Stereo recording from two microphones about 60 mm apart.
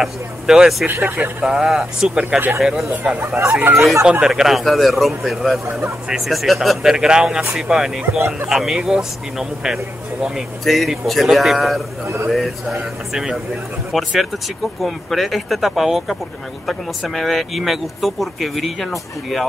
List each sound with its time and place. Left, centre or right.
0.0 s speech: centre
1.0 s speech: right
1.4 s speech: centre
3.3 s speech: right
4.0 s speech: centre
4.3 s speech: centre
13.1 s speech: centre
13.9 s speech: centre